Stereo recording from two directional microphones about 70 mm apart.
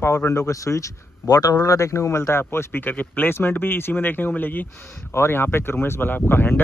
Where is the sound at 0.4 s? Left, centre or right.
Left.